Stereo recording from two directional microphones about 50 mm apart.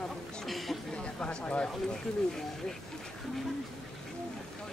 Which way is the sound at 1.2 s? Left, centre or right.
Left.